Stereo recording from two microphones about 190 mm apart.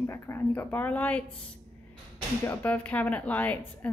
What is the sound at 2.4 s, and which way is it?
Speech, 10° left (ahead or behind).